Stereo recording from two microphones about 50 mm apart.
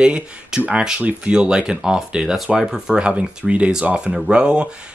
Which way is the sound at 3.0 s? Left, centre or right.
Right.